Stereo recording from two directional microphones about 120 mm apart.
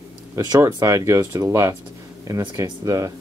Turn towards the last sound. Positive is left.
turn(degrees=-30)  # may be behind; listen again after turning